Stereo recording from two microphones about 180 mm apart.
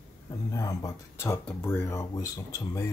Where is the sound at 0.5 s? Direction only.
20° left (ahead or behind).